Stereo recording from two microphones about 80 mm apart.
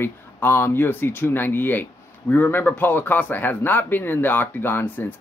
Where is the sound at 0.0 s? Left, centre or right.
Left.